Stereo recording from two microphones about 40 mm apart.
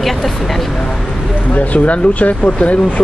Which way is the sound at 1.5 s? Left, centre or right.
Left.